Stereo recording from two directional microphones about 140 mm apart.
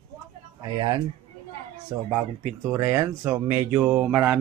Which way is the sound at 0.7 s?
30° right (ahead or behind).